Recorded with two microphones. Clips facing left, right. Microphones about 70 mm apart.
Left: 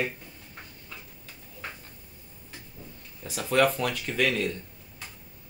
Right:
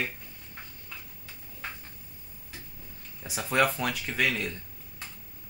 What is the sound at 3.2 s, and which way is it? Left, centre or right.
Speech, centre.